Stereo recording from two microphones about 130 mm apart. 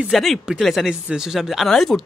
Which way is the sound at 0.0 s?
Centre (ahead or behind).